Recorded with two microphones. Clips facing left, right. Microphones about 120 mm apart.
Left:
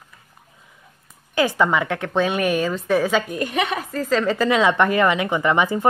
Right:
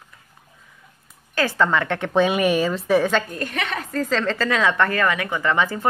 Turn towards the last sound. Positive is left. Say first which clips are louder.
# left 3 dB
turn(degrees=15)  # may be behind; listen again after turning